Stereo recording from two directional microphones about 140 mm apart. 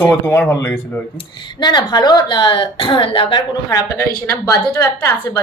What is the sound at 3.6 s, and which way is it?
A woman's voice, 20° left (ahead or behind).